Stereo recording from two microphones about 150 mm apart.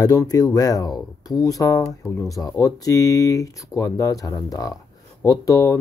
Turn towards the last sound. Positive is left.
turn(degrees=25)  # may be behind; listen again after turning